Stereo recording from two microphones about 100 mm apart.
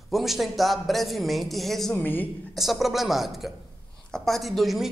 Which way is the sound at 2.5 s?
Centre (ahead or behind).